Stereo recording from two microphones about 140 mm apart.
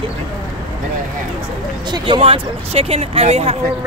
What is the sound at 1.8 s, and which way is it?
Speech, 30° right (ahead or behind).